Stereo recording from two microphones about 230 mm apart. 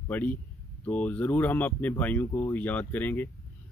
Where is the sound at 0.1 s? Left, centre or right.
Centre.